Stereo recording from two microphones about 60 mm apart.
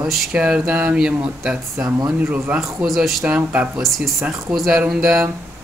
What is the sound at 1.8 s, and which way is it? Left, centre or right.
Speech, right.